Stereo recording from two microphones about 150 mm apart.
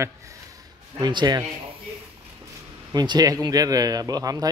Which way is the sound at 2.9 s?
25° right (ahead or behind).